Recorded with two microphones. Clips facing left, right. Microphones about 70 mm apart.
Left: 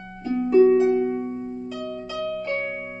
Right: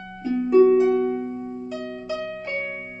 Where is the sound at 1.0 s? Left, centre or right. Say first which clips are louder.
Even; centre.